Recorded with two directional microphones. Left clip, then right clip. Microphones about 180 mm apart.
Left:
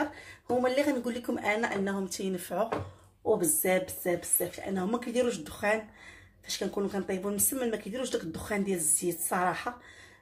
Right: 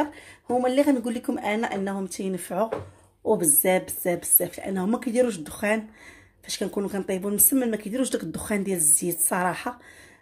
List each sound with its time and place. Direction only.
0.0 s speech: 45° right (ahead or behind)
3.3 s a woman's voice: 55° right (ahead or behind)